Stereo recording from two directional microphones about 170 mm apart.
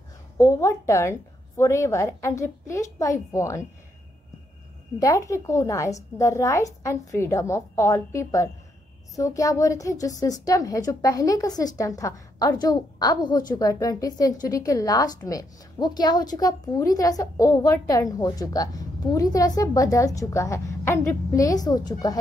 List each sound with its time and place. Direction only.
0.4 s a woman's voice: 20° left (ahead or behind)
4.9 s a woman's voice: 20° left (ahead or behind)